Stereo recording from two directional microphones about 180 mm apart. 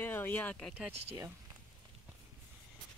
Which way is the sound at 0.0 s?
10° left (ahead or behind).